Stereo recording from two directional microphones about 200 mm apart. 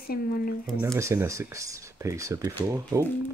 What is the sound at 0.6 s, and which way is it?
Speech, 10° right (ahead or behind).